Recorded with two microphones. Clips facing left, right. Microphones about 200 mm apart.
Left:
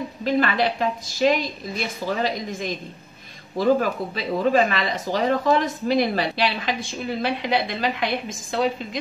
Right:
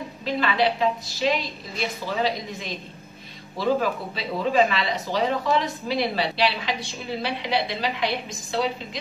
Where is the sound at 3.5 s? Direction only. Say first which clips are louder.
Left 4 dB; 50° left (ahead or behind).